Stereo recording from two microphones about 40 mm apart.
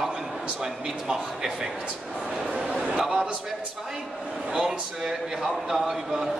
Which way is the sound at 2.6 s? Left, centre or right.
Right.